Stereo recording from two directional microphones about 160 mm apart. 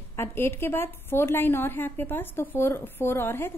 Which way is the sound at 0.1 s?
15° left (ahead or behind).